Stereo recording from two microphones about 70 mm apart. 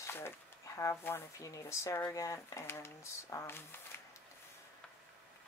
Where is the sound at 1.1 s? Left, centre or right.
Left.